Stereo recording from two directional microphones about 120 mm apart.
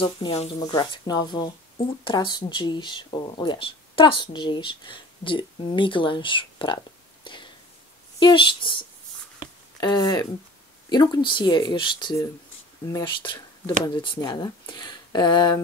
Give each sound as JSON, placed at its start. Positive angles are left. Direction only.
{"t": 0.0, "sound": "speech", "side_deg": 55}
{"t": 0.6, "sound": "speech", "side_deg": 35}
{"t": 7.3, "sound": "a sound", "side_deg": 40}
{"t": 8.2, "sound": "speech", "side_deg": 45}
{"t": 9.4, "sound": "a sound", "side_deg": 35}
{"t": 10.9, "sound": "speech", "side_deg": 35}